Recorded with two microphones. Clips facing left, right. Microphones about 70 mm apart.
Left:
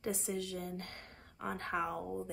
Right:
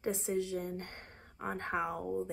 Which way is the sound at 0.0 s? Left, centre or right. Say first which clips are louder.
Right 4 dB; right.